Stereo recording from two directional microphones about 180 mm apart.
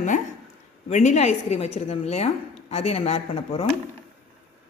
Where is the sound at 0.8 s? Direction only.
40° left (ahead or behind).